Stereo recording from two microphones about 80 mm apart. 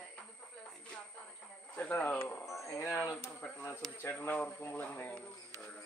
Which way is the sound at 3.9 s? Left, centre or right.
Left.